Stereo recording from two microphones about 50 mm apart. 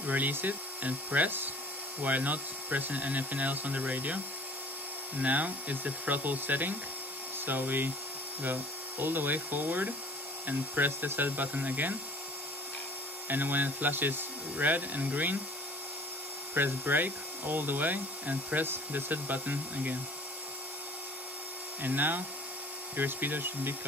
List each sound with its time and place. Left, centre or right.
0.0 s speech: right
5.2 s speech: right
13.3 s speech: right
16.5 s speech: right
21.8 s speech: right